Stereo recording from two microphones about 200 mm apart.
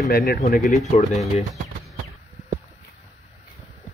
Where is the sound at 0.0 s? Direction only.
50° left (ahead or behind).